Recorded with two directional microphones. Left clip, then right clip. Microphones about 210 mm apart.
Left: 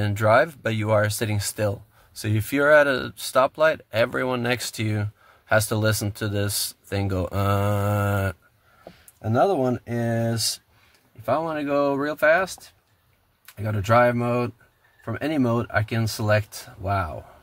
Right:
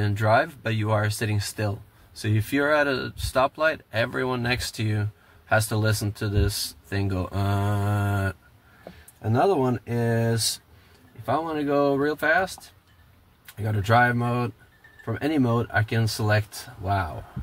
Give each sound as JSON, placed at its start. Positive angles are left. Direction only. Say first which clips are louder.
{"t": 0.0, "sound": "speech", "louder": "left 3 dB", "side_deg": 45}
{"t": 11.2, "sound": "speech", "louder": "left 1 dB", "side_deg": 45}
{"t": 13.6, "sound": "speech", "louder": "left 2 dB", "side_deg": 40}